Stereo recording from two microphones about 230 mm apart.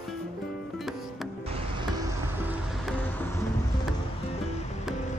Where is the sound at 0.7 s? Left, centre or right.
Centre.